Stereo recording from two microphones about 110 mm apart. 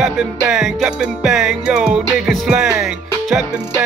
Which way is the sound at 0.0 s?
5° right (ahead or behind).